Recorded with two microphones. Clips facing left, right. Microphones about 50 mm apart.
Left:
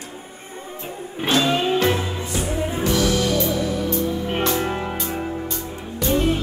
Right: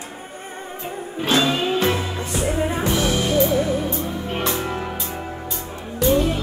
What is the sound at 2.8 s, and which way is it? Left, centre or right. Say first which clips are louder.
Music: left 1 dB; right.